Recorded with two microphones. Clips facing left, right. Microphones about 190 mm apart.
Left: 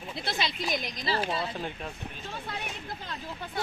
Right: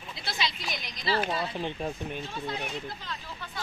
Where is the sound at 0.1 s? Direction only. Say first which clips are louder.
Left 1 dB; 55° left (ahead or behind).